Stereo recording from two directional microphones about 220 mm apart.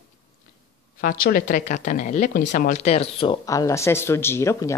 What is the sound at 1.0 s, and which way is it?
Speech, 40° left (ahead or behind).